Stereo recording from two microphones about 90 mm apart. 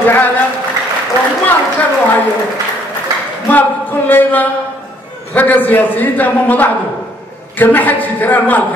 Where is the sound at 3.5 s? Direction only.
20° left (ahead or behind).